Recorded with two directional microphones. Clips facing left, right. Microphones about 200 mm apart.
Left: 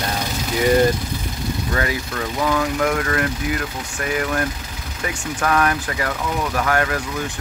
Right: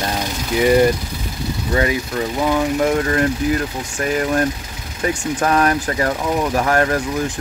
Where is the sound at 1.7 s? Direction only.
20° right (ahead or behind).